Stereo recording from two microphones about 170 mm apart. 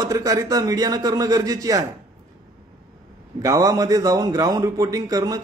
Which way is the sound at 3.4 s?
20° right (ahead or behind).